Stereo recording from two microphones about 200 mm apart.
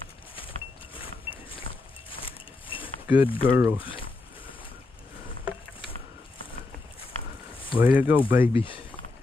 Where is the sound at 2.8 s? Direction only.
10° right (ahead or behind).